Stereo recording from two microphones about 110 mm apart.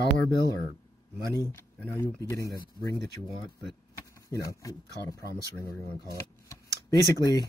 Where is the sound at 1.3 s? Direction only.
30° left (ahead or behind).